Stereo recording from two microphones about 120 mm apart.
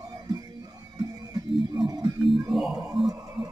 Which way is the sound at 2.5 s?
Centre (ahead or behind).